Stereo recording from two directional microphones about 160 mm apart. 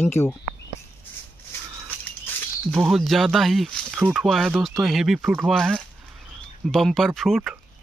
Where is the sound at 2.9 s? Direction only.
Centre (ahead or behind).